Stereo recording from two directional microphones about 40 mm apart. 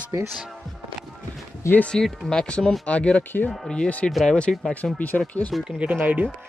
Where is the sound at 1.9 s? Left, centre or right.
Centre; by 4.1 s left.